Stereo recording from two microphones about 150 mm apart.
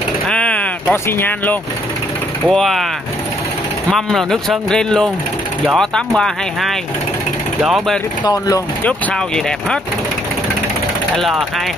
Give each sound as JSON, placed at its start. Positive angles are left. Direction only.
{"t": 0.3, "sound": "vehicle", "side_deg": 10}
{"t": 2.5, "sound": "speech", "side_deg": 0}
{"t": 3.9, "sound": "speech", "side_deg": 0}
{"t": 8.2, "sound": "speech", "side_deg": 25}
{"t": 8.8, "sound": "speech", "side_deg": 5}
{"t": 11.1, "sound": "speech", "side_deg": 0}